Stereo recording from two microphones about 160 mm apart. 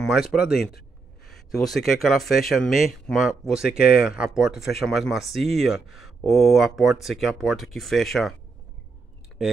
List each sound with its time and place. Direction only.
0.0 s speech: centre (ahead or behind)
0.5 s speech: 80° left
1.5 s speech: centre (ahead or behind)